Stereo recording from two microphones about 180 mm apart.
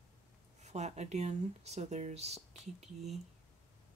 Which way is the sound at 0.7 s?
40° right (ahead or behind).